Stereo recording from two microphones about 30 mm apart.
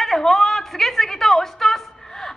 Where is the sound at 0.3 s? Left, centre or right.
Centre.